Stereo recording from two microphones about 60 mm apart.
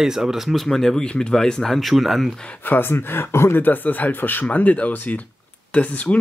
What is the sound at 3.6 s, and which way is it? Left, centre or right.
Speech, left.